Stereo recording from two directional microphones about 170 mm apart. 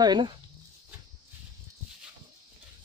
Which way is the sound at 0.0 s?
25° right (ahead or behind).